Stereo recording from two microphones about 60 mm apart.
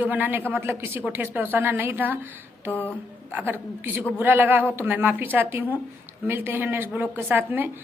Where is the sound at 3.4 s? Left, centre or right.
Right.